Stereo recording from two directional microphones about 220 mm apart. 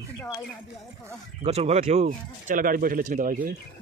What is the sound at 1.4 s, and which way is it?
Speech, 30° right (ahead or behind).